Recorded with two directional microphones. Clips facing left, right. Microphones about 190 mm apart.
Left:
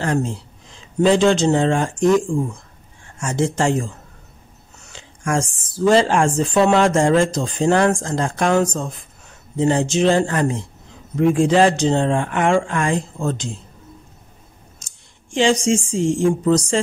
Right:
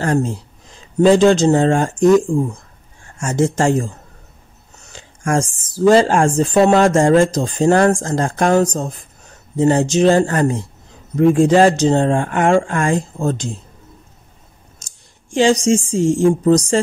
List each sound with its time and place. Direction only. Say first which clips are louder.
0.0 s a woman's voice: right 3 dB; 45° right (ahead or behind)
3.2 s a woman's voice: right 3 dB; 45° right (ahead or behind)
4.9 s a woman's voice: right 3 dB; 45° right (ahead or behind)
15.3 s a woman's voice: right 3 dB; 40° right (ahead or behind)